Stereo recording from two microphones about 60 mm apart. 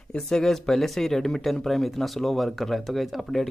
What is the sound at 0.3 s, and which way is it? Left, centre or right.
Speech, centre.